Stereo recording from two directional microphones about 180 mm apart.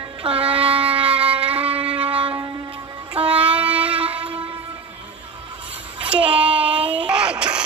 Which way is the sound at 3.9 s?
30° right (ahead or behind).